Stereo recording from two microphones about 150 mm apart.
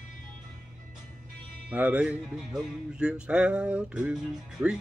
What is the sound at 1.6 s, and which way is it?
Music, 10° right (ahead or behind).